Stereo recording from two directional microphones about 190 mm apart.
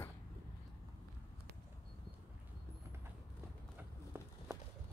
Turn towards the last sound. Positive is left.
turn(degrees=-10)  # may be behind; listen again after turning